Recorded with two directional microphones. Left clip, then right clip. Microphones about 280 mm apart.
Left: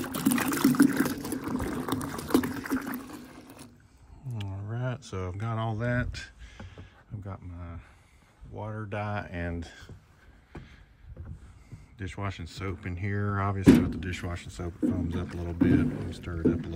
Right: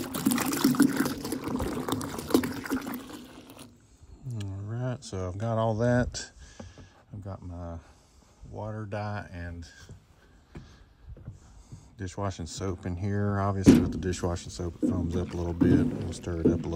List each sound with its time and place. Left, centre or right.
0.0 s boat: centre
4.3 s a sound: centre
8.5 s speech: centre
12.0 s speech: centre